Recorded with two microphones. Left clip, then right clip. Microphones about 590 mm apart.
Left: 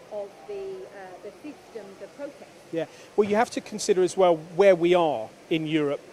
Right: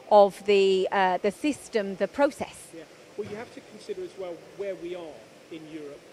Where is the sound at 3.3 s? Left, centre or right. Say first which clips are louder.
Left 15 dB; left.